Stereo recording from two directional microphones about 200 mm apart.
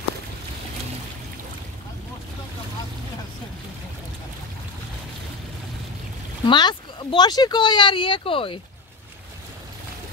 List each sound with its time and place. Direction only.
6.4 s speech: 20° left (ahead or behind)